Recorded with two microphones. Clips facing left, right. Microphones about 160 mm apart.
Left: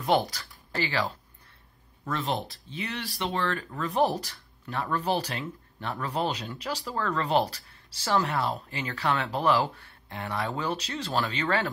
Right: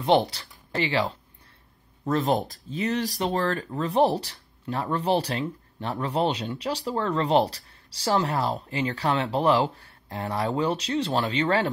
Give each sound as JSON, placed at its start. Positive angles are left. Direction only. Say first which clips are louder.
{"t": 0.0, "sound": "speech", "louder": "right 4 dB", "side_deg": -30}
{"t": 2.0, "sound": "speech", "louder": "right 7 dB", "side_deg": -45}